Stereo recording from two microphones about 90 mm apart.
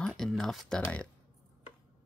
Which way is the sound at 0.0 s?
5° left (ahead or behind).